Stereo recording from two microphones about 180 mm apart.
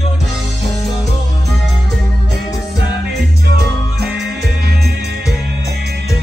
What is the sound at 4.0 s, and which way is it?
Music, 60° right (ahead or behind).